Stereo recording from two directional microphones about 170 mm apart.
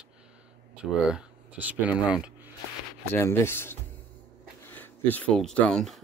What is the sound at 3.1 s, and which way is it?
Speech, 15° left (ahead or behind).